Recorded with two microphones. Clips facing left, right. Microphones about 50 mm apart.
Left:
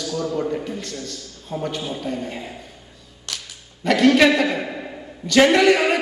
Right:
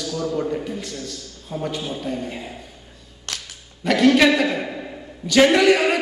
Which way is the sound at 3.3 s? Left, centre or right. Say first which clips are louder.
Right 1 dB; right.